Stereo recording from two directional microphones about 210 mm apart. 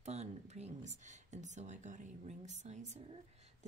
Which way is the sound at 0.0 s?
30° right (ahead or behind).